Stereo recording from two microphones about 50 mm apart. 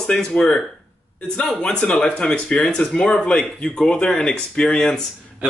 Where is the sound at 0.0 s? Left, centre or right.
Centre.